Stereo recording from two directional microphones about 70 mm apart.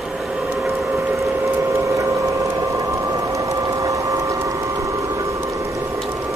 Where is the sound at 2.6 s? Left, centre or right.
Right.